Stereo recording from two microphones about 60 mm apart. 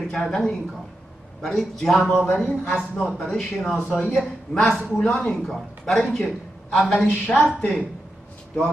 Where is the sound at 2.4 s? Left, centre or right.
Left.